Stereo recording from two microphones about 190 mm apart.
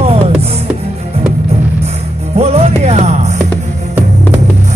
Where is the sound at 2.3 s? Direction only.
35° right (ahead or behind).